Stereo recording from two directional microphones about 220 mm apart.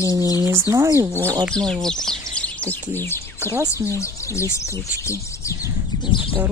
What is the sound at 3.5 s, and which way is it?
Speech, 10° right (ahead or behind).